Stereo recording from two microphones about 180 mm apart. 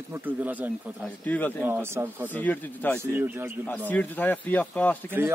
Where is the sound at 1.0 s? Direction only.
10° left (ahead or behind).